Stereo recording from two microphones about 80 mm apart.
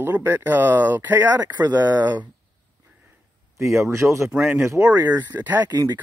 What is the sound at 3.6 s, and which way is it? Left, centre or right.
Speech, right.